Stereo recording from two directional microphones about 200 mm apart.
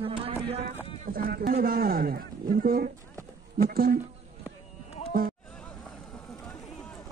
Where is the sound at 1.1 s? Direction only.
45° right (ahead or behind).